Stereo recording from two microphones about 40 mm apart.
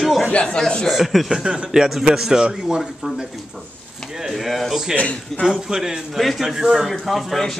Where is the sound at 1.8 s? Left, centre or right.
Centre.